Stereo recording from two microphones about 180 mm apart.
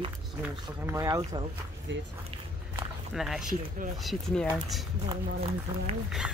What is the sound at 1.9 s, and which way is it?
Speech, 90° right.